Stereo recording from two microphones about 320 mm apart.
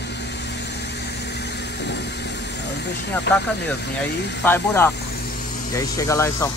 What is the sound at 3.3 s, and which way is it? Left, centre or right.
Speech, left.